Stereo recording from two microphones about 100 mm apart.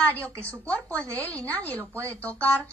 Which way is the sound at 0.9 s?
15° left (ahead or behind).